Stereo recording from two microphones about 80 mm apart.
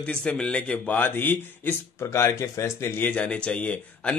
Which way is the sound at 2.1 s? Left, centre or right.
Left.